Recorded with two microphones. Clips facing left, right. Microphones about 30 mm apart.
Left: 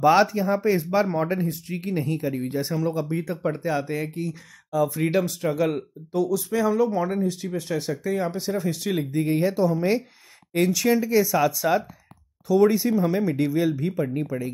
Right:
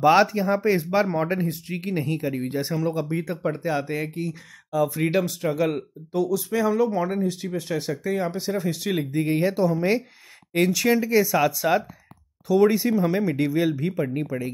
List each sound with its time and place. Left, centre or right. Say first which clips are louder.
0.3 s speech: even; right; by 8.9 s centre
8.9 s speech: even; right